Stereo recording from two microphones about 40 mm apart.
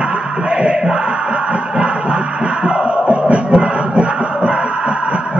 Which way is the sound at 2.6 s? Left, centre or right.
Right.